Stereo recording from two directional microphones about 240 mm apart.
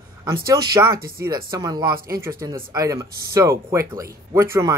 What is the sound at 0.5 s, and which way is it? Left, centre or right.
Speech, centre.